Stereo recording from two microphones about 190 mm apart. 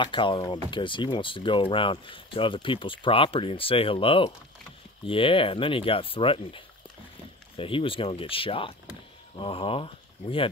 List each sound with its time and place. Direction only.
0.0 s speech: 25° left (ahead or behind)